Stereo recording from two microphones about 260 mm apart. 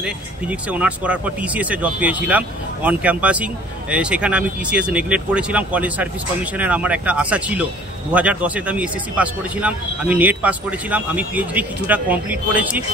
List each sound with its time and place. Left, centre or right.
0.0 s speech: centre